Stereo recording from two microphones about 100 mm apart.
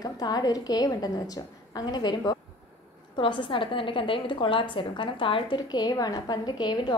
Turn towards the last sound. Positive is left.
turn(degrees=45)  # may be behind; listen again after turning